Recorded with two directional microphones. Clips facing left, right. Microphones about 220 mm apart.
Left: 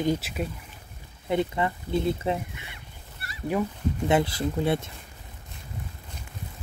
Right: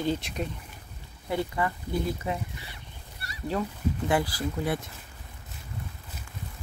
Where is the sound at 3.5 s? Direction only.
20° left (ahead or behind).